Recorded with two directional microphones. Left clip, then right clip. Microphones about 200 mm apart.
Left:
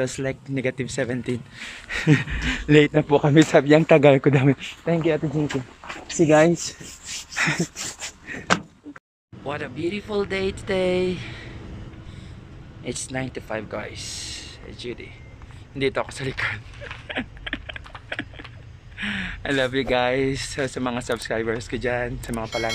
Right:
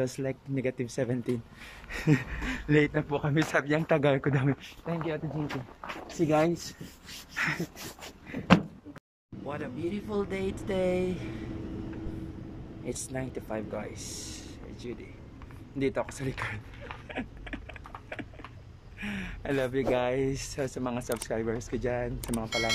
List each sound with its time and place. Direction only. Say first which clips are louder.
0.0 s speech: left 6 dB; 5° right (ahead or behind)
3.1 s speech: left 12 dB; 25° left (ahead or behind)
5.5 s a sound: left 7 dB; centre (ahead or behind)
6.1 s speech: left 10 dB; 15° left (ahead or behind)
9.5 s speech: left 7 dB; 5° right (ahead or behind)
12.8 s speech: left 7 dB; 10° right (ahead or behind)
17.1 s typing: left 10 dB; 5° right (ahead or behind)
18.9 s speech: left 10 dB; 10° right (ahead or behind)